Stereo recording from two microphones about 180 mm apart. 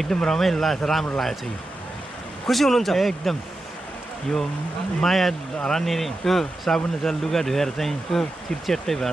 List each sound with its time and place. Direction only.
0.0 s speech: 5° left (ahead or behind)
2.4 s speech: centre (ahead or behind)
5.0 s speech: centre (ahead or behind)